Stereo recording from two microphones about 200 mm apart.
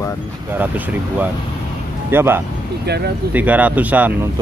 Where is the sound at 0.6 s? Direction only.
10° right (ahead or behind).